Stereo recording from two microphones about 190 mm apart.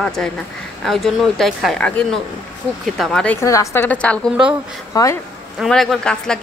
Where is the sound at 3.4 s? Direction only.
15° left (ahead or behind).